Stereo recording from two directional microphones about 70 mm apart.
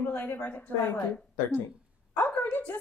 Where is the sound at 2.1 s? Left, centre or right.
Left.